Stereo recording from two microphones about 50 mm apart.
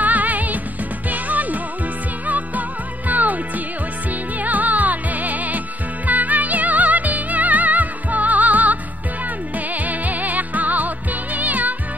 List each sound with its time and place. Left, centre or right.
0.0 s music: right